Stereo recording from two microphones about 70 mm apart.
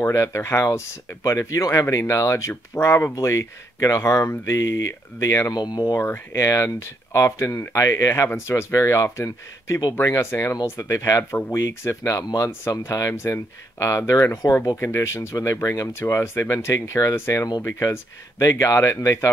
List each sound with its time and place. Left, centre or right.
0.0 s speech: left
5.5 s speech: left
6.3 s speech: left
10.0 s speech: left